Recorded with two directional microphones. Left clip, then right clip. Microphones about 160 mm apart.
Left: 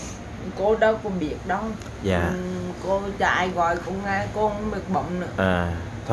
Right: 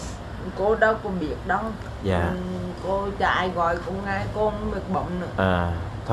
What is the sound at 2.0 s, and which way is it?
Speech, 10° left (ahead or behind).